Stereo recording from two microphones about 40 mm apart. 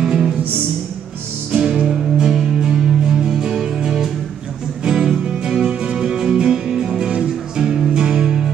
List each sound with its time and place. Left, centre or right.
0.0 s music: centre
1.5 s music: right